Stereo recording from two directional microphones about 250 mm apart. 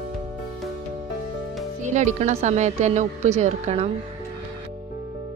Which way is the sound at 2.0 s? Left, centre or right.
Right.